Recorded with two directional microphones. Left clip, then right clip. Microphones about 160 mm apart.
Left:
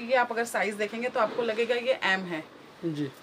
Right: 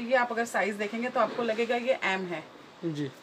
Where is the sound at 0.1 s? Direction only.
50° left (ahead or behind).